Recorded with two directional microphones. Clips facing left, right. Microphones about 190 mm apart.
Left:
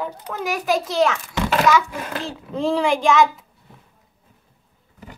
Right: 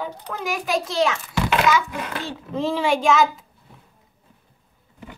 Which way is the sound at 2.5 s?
Centre (ahead or behind).